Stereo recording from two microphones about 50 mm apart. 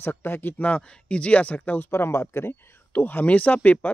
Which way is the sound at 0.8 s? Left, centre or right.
Left.